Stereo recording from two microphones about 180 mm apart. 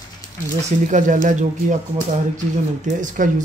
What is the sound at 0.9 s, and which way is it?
Speech, 45° right (ahead or behind).